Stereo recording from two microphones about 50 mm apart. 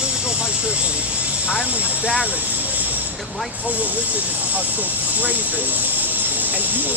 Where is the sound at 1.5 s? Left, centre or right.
Centre.